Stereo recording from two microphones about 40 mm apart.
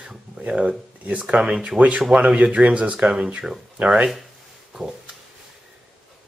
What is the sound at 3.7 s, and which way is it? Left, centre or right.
Speech, right.